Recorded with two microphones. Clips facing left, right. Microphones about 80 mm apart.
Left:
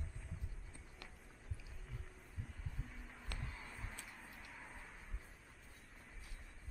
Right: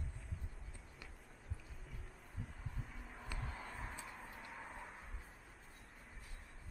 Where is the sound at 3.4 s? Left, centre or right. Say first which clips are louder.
Right 4 dB; right.